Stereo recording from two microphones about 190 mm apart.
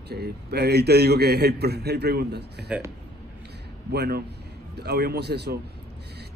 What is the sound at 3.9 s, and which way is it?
Speech, 60° right (ahead or behind).